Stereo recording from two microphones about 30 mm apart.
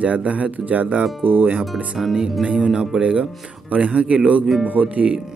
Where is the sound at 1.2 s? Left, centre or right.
Right.